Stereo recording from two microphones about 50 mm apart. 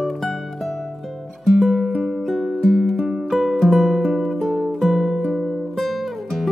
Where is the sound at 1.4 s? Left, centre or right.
Centre.